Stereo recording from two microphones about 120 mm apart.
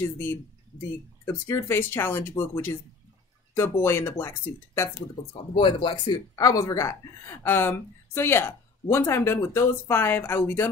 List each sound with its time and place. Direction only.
0.2 s speech: 20° left (ahead or behind)
5.6 s speech: 45° left (ahead or behind); by 10.7 s 20° left (ahead or behind)